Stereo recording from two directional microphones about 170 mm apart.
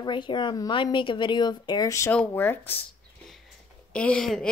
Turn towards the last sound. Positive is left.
turn(degrees=5)  # may be behind; listen again after turning